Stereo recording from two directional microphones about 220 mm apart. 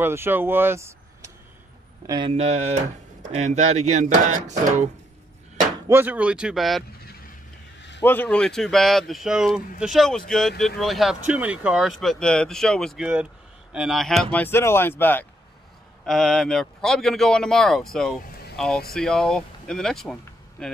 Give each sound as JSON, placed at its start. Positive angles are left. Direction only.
{"t": 0.0, "sound": "speech", "side_deg": -10}
{"t": 2.0, "sound": "speech", "side_deg": -20}
{"t": 5.9, "sound": "speech", "side_deg": -10}
{"t": 8.0, "sound": "speech", "side_deg": 10}